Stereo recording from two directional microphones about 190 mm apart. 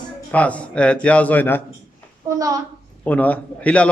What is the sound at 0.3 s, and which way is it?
A man's voice, 5° left (ahead or behind).